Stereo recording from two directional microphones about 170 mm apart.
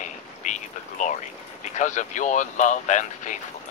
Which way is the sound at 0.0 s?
45° left (ahead or behind).